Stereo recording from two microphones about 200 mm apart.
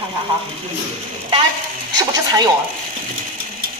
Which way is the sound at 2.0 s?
20° right (ahead or behind).